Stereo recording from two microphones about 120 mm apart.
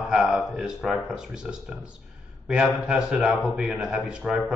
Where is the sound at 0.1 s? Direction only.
5° right (ahead or behind).